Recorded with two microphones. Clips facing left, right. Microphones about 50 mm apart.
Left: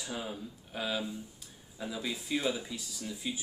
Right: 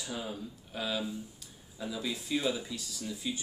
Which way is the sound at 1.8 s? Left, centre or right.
Centre.